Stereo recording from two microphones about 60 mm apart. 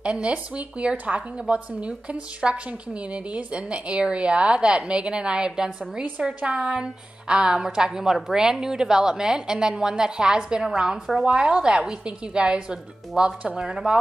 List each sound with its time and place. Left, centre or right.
0.0 s a woman's voice: centre